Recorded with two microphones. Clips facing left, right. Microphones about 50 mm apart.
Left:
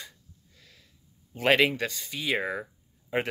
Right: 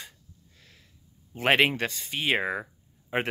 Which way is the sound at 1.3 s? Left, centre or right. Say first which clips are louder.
Even; right.